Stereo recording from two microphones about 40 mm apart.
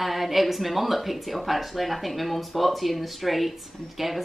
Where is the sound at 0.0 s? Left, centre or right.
Centre.